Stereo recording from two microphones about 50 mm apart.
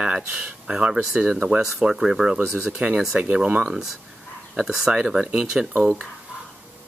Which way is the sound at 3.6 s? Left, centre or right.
Centre.